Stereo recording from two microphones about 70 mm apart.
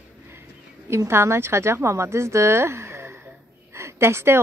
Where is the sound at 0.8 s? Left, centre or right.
Right.